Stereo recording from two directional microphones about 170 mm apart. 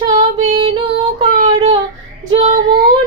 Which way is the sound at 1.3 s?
45° right (ahead or behind).